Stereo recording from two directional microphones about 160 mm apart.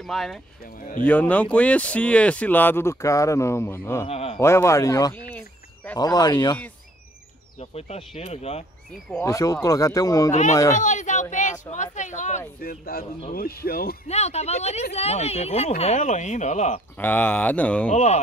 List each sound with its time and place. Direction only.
0.0 s speech: centre (ahead or behind)
4.1 s speech: 40° left (ahead or behind)
4.4 s speech: 15° left (ahead or behind)
7.7 s speech: 40° left (ahead or behind)
9.2 s speech: 20° left (ahead or behind)
10.7 s speech: 50° left (ahead or behind)
12.6 s speech: 70° left (ahead or behind)
14.0 s speech: 40° left (ahead or behind)
17.0 s speech: 10° left (ahead or behind)
17.9 s speech: 45° left (ahead or behind)